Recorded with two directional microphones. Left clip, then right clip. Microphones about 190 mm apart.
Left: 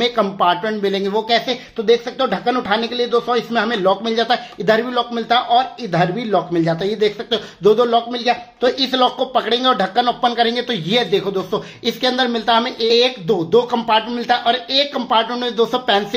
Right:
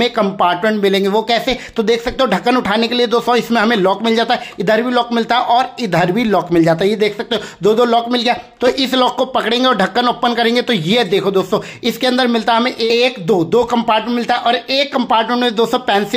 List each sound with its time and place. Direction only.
0.0 s speech: 25° right (ahead or behind)